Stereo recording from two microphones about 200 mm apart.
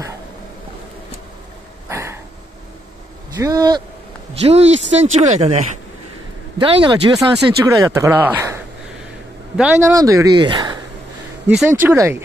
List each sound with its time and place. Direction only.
1.9 s a sound: 15° right (ahead or behind)
3.3 s speech: 15° right (ahead or behind)
4.4 s speech: 30° right (ahead or behind); by 8.5 s 10° right (ahead or behind)
9.6 s speech: 10° right (ahead or behind)
11.4 s speech: centre (ahead or behind)